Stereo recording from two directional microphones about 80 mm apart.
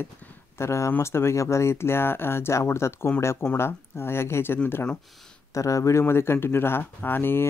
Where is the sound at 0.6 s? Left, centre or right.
Left.